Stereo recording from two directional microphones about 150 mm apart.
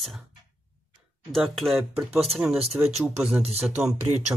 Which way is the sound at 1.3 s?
Centre (ahead or behind).